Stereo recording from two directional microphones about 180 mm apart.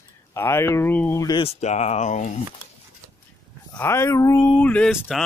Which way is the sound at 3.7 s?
15° left (ahead or behind).